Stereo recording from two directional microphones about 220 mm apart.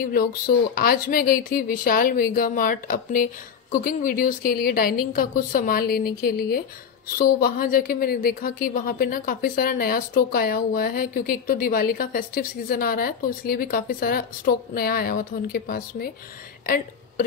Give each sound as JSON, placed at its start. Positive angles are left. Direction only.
{"t": 0.0, "sound": "a woman's voice", "side_deg": 40}